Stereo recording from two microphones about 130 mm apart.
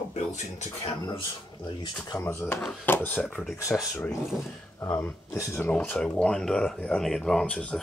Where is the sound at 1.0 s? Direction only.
35° left (ahead or behind).